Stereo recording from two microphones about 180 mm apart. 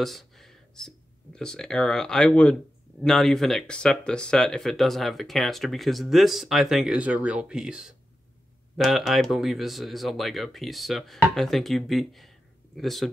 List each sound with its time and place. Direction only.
0.0 s speech: centre (ahead or behind)